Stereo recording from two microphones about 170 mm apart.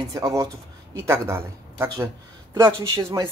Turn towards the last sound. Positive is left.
turn(degrees=-20)  # may be behind; listen again after turning